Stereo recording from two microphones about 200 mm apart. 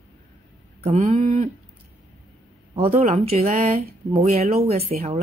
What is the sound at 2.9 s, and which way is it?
Speech, 30° right (ahead or behind).